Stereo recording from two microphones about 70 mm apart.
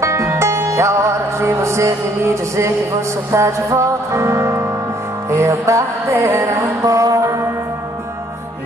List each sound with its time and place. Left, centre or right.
0.0 s music: right